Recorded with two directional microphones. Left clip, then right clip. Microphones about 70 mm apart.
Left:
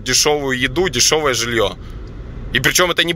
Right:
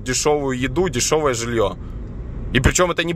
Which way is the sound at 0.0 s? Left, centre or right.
Right.